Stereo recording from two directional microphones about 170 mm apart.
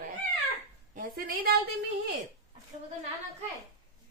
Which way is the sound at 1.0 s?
55° right (ahead or behind).